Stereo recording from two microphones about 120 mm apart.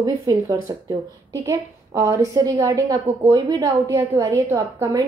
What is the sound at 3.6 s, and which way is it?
A woman's voice, 30° right (ahead or behind).